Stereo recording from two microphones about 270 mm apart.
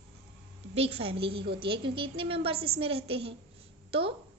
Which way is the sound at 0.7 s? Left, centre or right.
Right.